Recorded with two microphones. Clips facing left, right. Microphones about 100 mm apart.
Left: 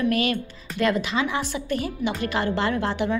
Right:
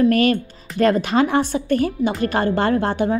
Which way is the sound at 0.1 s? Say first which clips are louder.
Right 7 dB; 45° right (ahead or behind).